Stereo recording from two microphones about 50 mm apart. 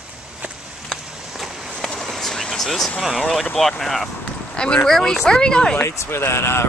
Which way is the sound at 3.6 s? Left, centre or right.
Centre.